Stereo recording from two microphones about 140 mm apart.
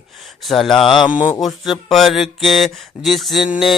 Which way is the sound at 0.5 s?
5° left (ahead or behind).